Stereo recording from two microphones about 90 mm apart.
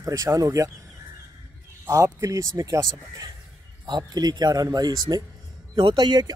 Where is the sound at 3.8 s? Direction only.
50° right (ahead or behind).